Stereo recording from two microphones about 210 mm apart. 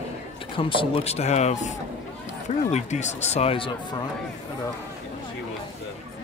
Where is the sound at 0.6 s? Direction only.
25° left (ahead or behind).